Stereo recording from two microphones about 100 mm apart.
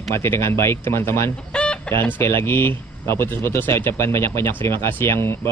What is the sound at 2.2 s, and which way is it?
Speech, 25° left (ahead or behind).